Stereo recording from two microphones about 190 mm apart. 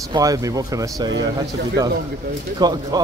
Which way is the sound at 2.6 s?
20° right (ahead or behind).